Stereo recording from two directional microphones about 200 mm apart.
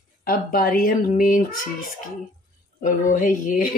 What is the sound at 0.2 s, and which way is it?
Speech, 50° left (ahead or behind).